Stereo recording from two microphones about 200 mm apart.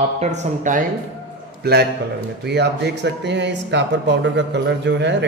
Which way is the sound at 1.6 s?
55° right (ahead or behind).